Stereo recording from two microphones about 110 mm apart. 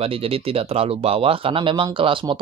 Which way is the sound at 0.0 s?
60° right (ahead or behind).